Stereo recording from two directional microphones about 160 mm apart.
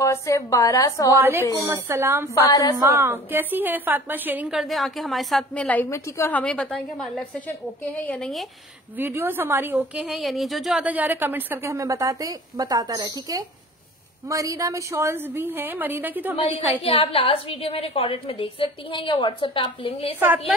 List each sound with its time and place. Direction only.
0.0 s a woman's voice: 20° left (ahead or behind)
1.1 s a woman's voice: 15° right (ahead or behind)
2.5 s a woman's voice: 20° left (ahead or behind)
2.8 s a woman's voice: 15° right (ahead or behind); by 6.4 s 15° left (ahead or behind)
6.4 s a woman's voice: 5° left (ahead or behind)
8.9 s a woman's voice: 15° right (ahead or behind)
16.3 s a woman's voice: 35° left (ahead or behind)